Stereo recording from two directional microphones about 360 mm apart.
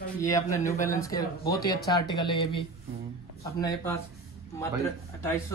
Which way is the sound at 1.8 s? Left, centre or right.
Centre.